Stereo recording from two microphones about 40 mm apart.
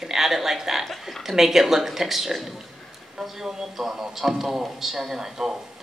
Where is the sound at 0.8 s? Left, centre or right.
Centre.